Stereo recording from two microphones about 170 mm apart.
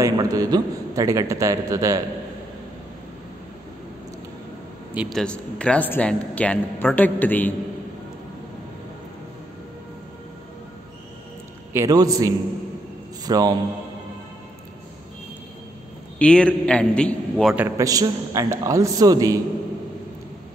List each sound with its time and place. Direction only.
0.0 s a man's voice: 20° right (ahead or behind)
4.9 s a man's voice: 5° left (ahead or behind)
11.7 s a man's voice: 20° right (ahead or behind)
16.2 s a man's voice: 5° left (ahead or behind)
17.6 s a man's voice: 15° right (ahead or behind)